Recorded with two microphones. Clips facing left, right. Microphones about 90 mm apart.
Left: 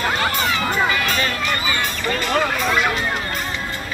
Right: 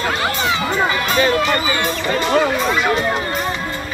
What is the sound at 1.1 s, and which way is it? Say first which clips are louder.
Speech: right 6 dB; 30° right (ahead or behind).